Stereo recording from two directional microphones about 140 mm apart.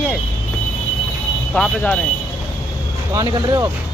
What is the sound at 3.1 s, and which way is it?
Speech, 25° right (ahead or behind).